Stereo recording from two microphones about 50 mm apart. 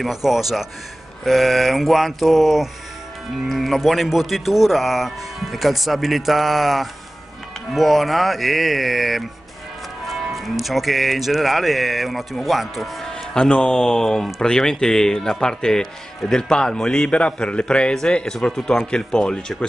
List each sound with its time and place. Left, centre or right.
0.0 s speech: centre
13.0 s speech: centre